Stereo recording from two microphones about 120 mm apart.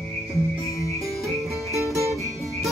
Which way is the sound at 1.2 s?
Centre (ahead or behind).